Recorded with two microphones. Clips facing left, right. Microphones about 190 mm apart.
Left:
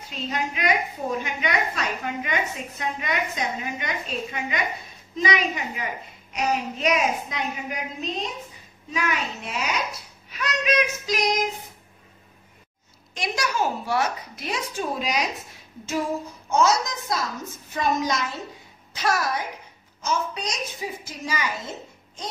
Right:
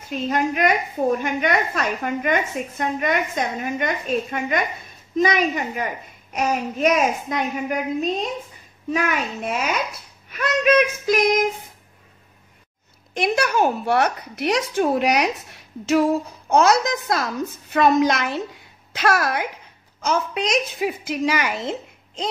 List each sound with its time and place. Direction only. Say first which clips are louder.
0.1 s a woman's voice: right 7 dB; 50° right (ahead or behind)
8.9 s a woman's voice: right 4 dB; 50° right (ahead or behind)
13.1 s a woman's voice: right 7 dB; 60° right (ahead or behind); by 21.7 s 75° right (ahead or behind)